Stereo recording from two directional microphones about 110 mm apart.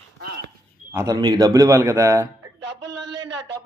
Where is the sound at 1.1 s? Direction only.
40° right (ahead or behind).